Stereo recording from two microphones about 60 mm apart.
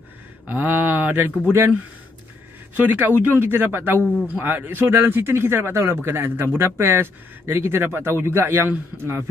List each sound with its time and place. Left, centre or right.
0.5 s speech: right
2.8 s speech: right